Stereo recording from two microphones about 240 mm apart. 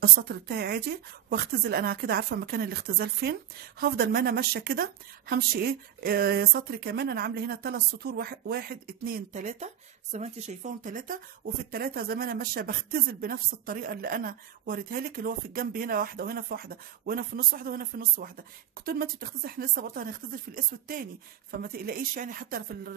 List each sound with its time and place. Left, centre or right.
0.0 s speech: right